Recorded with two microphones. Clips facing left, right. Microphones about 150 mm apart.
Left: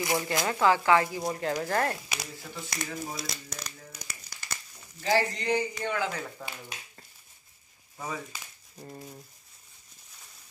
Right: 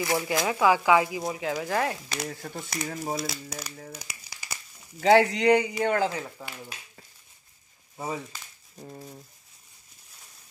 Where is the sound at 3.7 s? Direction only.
50° right (ahead or behind).